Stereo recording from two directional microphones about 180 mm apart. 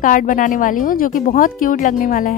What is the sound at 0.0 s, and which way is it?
Speech, 50° left (ahead or behind).